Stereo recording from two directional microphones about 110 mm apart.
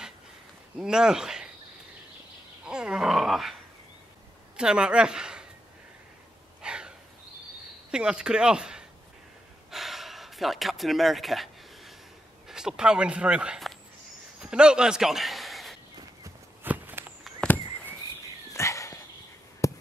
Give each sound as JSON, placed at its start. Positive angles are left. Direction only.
{"t": 0.7, "sound": "speech", "side_deg": -5}
{"t": 2.6, "sound": "grunt", "side_deg": -5}
{"t": 4.6, "sound": "a woman's voice", "side_deg": -10}
{"t": 6.6, "sound": "a sound", "side_deg": -10}
{"t": 7.9, "sound": "speech", "side_deg": -10}
{"t": 9.7, "sound": "gasp", "side_deg": 0}
{"t": 12.4, "sound": "speech", "side_deg": -5}
{"t": 14.4, "sound": "a sound", "side_deg": -10}
{"t": 16.6, "sound": "walk", "side_deg": -15}
{"t": 17.4, "sound": "a sound", "side_deg": 15}
{"t": 18.5, "sound": "dog", "side_deg": 25}
{"t": 19.6, "sound": "a sound", "side_deg": 30}